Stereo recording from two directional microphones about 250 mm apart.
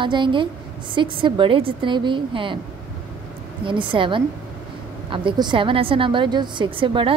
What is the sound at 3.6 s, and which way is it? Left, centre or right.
A woman's voice, centre.